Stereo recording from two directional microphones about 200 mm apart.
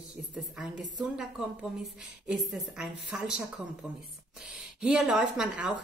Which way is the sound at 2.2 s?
5° right (ahead or behind).